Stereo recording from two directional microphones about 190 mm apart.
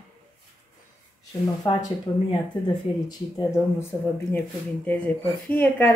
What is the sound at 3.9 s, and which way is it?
Speech, 15° left (ahead or behind).